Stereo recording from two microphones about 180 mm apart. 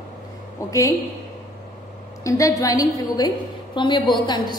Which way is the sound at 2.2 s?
20° left (ahead or behind).